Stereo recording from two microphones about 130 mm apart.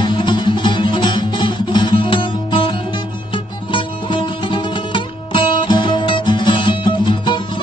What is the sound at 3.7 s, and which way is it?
Music, 40° left (ahead or behind).